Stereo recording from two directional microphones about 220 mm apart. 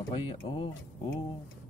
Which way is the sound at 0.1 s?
20° left (ahead or behind).